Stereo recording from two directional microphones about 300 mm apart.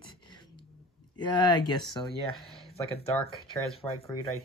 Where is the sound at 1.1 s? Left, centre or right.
Centre.